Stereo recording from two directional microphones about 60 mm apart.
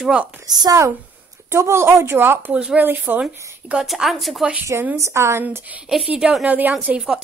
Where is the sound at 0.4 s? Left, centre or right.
Right.